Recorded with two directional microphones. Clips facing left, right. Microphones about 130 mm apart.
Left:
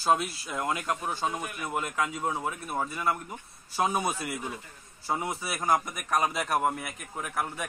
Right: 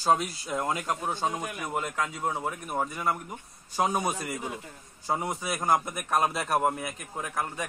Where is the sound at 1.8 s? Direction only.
10° left (ahead or behind).